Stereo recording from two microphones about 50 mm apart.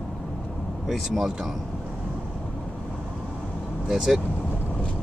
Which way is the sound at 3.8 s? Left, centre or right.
Centre.